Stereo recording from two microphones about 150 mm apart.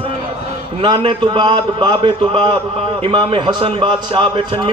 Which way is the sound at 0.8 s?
30° right (ahead or behind).